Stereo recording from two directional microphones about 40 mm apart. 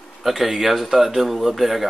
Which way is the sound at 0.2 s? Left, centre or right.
Centre.